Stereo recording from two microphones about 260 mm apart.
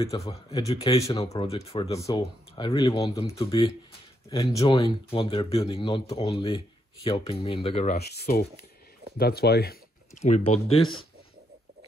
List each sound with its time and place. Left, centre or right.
0.0 s speech: centre
0.7 s speech: left
8.0 s speech: left
10.7 s speech: left